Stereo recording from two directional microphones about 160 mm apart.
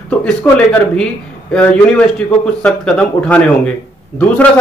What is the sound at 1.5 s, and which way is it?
Speech, 10° left (ahead or behind).